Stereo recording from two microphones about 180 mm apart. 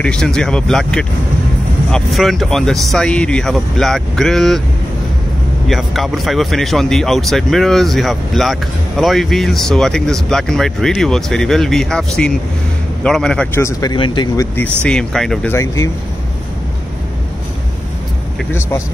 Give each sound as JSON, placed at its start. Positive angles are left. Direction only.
{"t": 0.0, "sound": "a man's voice", "side_deg": 5}
{"t": 5.7, "sound": "a man's voice", "side_deg": 0}
{"t": 13.6, "sound": "speech", "side_deg": 20}
{"t": 14.8, "sound": "a man's voice", "side_deg": 5}
{"t": 15.5, "sound": "speech", "side_deg": 15}